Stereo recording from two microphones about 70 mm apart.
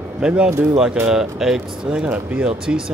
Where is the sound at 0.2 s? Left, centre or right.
Centre.